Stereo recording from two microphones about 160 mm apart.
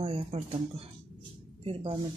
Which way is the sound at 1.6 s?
35° right (ahead or behind).